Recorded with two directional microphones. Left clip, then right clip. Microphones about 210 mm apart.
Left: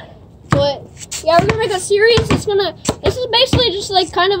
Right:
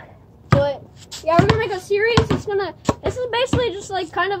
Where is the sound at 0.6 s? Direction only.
10° left (ahead or behind).